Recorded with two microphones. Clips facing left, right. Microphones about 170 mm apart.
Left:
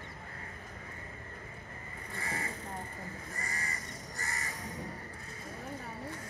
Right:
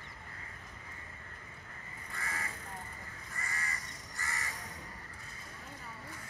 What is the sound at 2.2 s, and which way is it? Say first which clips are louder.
Vehicle: left 3 dB; 35° left (ahead or behind).